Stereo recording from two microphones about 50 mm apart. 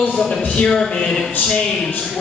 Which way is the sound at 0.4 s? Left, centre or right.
Left.